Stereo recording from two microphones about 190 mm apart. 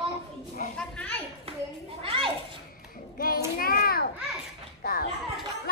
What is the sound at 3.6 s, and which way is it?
A child's voice, 50° left (ahead or behind).